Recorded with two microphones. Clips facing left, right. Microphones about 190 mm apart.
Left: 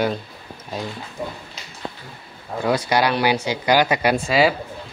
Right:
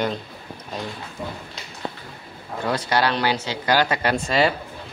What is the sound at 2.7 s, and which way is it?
Speech, 10° left (ahead or behind).